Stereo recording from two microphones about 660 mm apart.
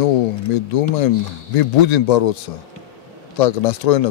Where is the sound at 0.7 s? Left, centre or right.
Left.